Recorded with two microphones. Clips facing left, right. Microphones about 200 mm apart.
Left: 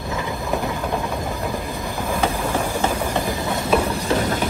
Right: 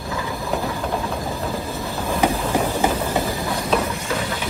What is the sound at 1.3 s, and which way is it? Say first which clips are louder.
Train: even; 15° left (ahead or behind).